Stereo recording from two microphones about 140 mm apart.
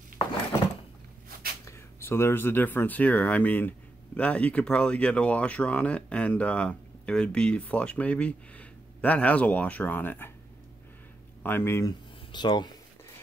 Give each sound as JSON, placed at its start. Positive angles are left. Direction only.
{"t": 1.7, "sound": "speech", "side_deg": 20}
{"t": 11.4, "sound": "speech", "side_deg": 15}
{"t": 12.3, "sound": "speech", "side_deg": 30}